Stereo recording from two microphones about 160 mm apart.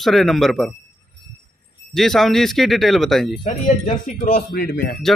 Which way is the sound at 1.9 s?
Centre (ahead or behind).